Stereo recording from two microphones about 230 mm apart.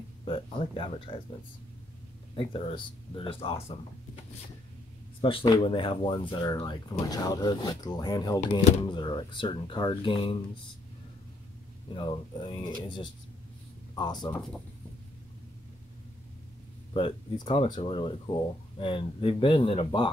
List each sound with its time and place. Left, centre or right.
0.2 s speech: left
2.3 s speech: left
5.2 s speech: left
8.5 s speech: left
11.9 s speech: left
13.9 s speech: centre
16.9 s speech: left